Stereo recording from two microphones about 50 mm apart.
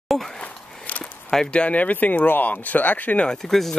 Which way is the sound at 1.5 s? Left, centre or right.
Left.